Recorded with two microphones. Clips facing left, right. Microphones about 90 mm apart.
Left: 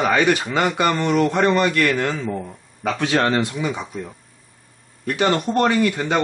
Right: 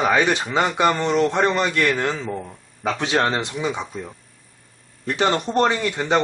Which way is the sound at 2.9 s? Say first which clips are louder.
Left 2 dB; 15° right (ahead or behind).